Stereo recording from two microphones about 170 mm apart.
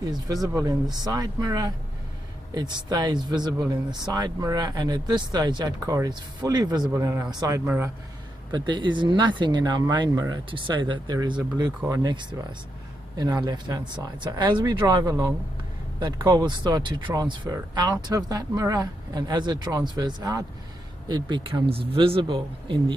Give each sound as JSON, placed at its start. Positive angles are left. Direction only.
{"t": 0.0, "sound": "speech", "side_deg": -20}
{"t": 7.6, "sound": "speech", "side_deg": -10}
{"t": 8.5, "sound": "speech", "side_deg": -25}
{"t": 11.6, "sound": "speech", "side_deg": -15}